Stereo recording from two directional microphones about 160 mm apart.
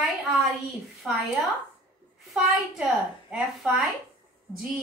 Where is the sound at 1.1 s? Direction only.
5° right (ahead or behind).